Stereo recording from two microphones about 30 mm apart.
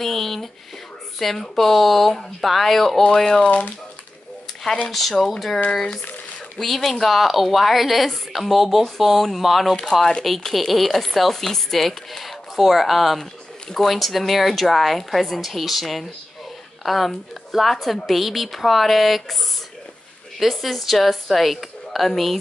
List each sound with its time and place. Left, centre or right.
0.0 s a sound: centre
1.2 s speech: centre
3.4 s speech: left
4.9 s speech: centre
6.6 s speech: centre
13.2 s speech: centre
20.4 s speech: centre